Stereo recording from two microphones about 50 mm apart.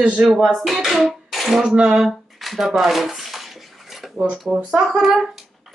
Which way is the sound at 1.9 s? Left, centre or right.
Centre.